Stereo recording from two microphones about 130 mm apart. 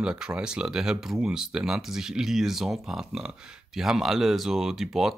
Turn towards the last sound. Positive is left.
turn(degrees=0)  # may be behind; listen again after turning